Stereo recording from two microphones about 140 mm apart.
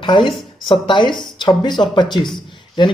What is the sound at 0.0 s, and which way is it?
A woman's voice, 35° left (ahead or behind).